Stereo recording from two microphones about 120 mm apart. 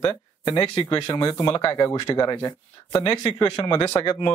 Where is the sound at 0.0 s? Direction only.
30° left (ahead or behind).